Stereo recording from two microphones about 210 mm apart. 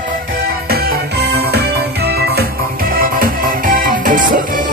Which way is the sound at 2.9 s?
40° right (ahead or behind).